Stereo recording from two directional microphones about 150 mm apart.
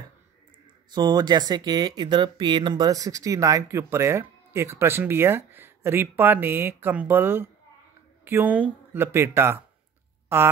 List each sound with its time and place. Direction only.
0.9 s speech: 30° right (ahead or behind)